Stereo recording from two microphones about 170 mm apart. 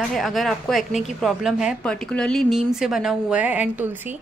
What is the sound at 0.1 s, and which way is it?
A woman's voice, centre (ahead or behind).